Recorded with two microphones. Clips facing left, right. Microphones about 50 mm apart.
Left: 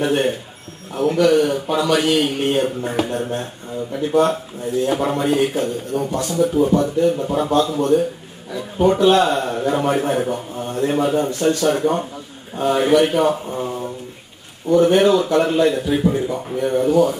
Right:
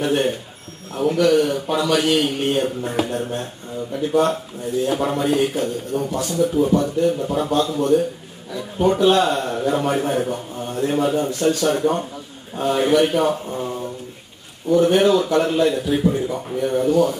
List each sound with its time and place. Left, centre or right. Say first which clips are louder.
0.0 s a man's voice: left 1 dB; centre